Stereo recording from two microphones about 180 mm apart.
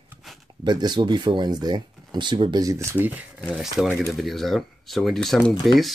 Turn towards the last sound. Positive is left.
turn(degrees=0)  # may be behind; listen again after turning